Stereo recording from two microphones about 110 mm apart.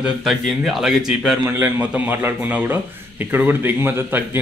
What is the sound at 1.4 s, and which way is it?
A man's voice, 20° right (ahead or behind).